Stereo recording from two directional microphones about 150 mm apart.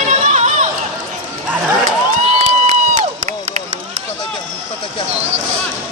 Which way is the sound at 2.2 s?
45° right (ahead or behind).